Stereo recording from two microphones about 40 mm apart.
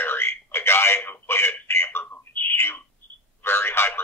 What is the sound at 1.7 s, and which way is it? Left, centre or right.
Telephone, left.